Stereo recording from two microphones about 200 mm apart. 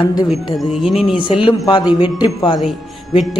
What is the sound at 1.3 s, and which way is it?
A man's voice, 25° left (ahead or behind).